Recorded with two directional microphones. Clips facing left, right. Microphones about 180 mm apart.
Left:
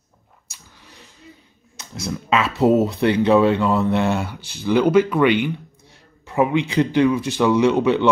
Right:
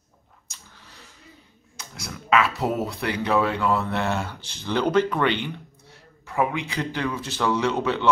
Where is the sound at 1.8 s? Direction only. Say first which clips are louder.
Left 10 dB; 25° left (ahead or behind).